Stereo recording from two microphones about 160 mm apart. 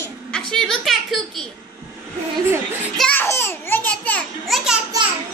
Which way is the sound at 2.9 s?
10° left (ahead or behind).